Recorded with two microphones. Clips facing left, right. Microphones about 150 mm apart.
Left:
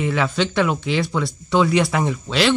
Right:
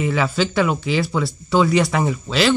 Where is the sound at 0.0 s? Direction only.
Centre (ahead or behind).